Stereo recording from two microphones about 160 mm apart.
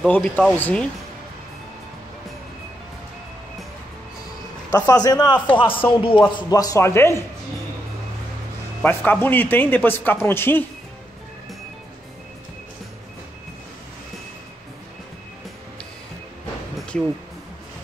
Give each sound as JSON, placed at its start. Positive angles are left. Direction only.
{"t": 0.0, "sound": "speech", "side_deg": 5}
{"t": 4.7, "sound": "a man's voice", "side_deg": 25}
{"t": 8.8, "sound": "speech", "side_deg": 10}
{"t": 16.7, "sound": "music", "side_deg": 5}